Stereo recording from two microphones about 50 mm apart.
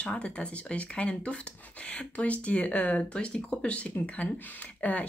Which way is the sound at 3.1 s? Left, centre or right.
Left.